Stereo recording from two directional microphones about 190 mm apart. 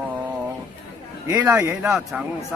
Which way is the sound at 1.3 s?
10° right (ahead or behind).